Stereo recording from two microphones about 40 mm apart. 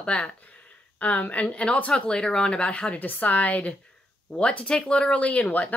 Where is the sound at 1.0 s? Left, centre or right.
Left.